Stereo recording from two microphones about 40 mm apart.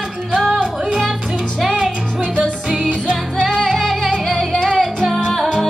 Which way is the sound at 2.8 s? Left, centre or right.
Centre.